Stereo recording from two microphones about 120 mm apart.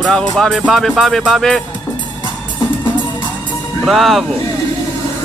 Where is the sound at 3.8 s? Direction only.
Centre (ahead or behind).